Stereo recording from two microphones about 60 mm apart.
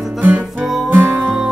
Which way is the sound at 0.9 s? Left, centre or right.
Right.